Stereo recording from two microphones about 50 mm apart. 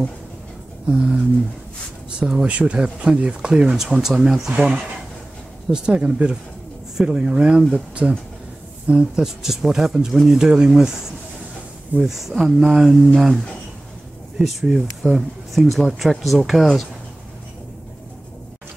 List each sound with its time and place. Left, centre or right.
0.8 s speech: right
4.0 s speech: centre
12.1 s speech: centre
13.0 s speech: centre
14.4 s speech: centre